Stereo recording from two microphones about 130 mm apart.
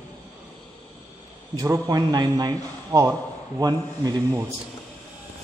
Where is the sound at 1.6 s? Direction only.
25° right (ahead or behind).